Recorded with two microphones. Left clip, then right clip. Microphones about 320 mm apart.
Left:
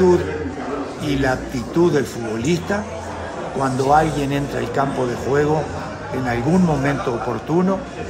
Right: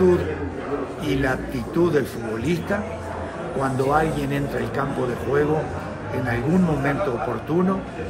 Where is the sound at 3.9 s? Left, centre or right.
Centre.